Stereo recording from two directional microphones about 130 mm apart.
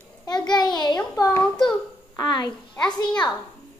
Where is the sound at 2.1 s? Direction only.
35° left (ahead or behind).